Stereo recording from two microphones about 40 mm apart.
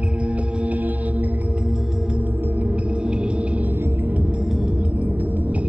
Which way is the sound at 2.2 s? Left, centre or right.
Right.